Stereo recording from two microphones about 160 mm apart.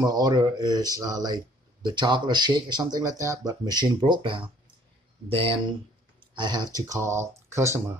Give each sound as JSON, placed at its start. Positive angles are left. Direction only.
{"t": 0.0, "sound": "speech", "side_deg": -25}